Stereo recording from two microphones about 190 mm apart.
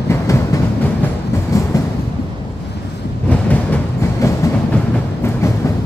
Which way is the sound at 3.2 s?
10° left (ahead or behind).